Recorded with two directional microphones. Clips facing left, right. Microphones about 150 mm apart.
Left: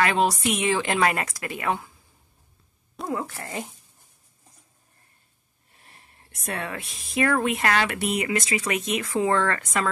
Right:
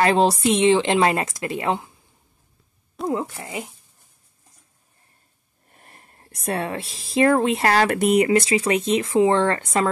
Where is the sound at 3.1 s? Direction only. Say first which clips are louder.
Right 4 dB; 25° right (ahead or behind).